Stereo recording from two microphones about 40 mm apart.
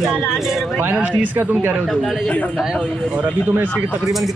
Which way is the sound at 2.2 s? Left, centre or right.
Left.